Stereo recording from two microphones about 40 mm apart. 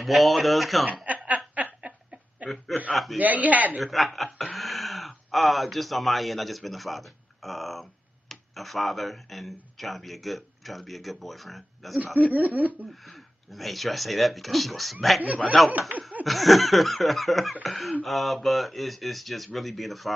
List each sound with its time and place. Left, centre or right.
0.0 s speech: centre
1.0 s snicker: right
2.4 s chuckle: right
2.9 s speech: centre
3.2 s speech: right
3.8 s speech: centre
12.4 s speech: right
13.0 s speech: centre